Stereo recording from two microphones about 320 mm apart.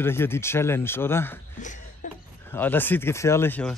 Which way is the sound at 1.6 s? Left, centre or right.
Left.